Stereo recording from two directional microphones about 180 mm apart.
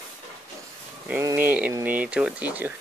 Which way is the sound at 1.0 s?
10° right (ahead or behind).